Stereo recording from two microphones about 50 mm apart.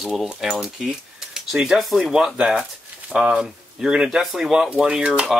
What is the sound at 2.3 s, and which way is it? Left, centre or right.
Speech, right.